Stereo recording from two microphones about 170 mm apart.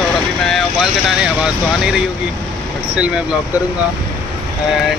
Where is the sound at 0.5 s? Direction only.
5° right (ahead or behind).